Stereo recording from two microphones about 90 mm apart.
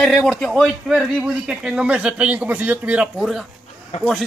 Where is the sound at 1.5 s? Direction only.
10° right (ahead or behind).